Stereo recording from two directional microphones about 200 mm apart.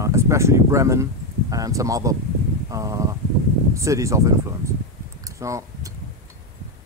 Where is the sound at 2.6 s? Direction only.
15° right (ahead or behind).